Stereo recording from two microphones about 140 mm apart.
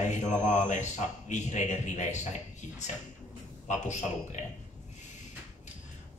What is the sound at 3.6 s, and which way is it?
Speech, 55° left (ahead or behind).